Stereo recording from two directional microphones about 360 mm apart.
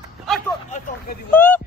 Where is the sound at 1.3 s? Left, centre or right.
Centre.